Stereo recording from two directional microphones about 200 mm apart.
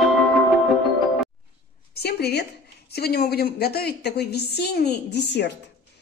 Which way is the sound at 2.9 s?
50° left (ahead or behind).